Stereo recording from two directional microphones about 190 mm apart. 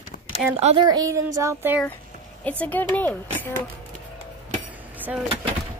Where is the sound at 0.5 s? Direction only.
30° right (ahead or behind).